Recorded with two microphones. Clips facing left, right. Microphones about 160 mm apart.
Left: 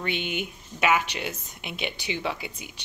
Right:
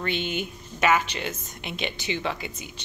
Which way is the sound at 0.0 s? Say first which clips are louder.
Right 2 dB; 15° left (ahead or behind).